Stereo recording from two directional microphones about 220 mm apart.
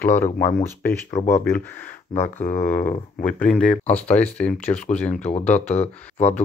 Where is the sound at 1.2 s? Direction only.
35° left (ahead or behind).